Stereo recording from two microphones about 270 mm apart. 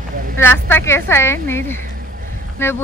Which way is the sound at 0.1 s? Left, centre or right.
Right.